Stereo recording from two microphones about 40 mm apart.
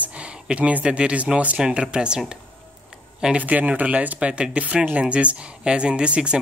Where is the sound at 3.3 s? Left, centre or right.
Right.